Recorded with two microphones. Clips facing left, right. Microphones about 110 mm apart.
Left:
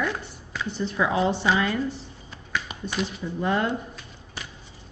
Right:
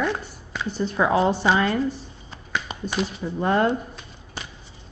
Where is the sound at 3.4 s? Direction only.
45° right (ahead or behind).